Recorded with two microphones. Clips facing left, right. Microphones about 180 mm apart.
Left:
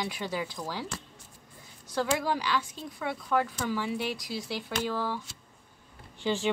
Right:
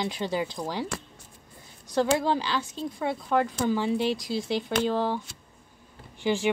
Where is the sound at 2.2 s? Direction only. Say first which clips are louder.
Right 3 dB; 25° right (ahead or behind).